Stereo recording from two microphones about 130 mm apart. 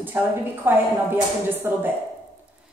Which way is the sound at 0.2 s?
15° right (ahead or behind).